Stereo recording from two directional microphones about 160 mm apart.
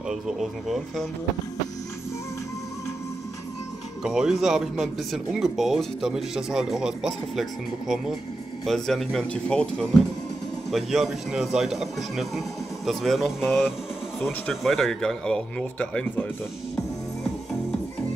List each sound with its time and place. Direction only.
0.1 s speech: centre (ahead or behind)
4.0 s speech: 5° right (ahead or behind)